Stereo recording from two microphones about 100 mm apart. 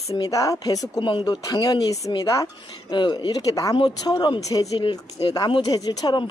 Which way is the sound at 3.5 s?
35° left (ahead or behind).